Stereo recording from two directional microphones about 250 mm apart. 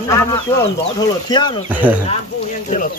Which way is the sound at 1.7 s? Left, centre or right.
Centre.